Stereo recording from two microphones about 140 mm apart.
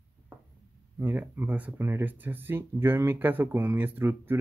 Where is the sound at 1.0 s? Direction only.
15° right (ahead or behind).